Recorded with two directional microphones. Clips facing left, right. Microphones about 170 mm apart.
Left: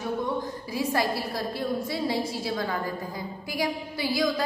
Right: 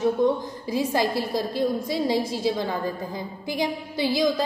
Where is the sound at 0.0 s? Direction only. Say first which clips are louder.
Right 7 dB; 20° right (ahead or behind).